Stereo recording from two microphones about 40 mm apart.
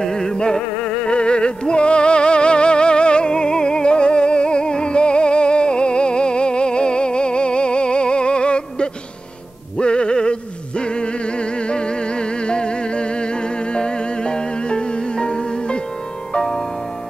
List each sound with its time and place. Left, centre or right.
0.0 s music: centre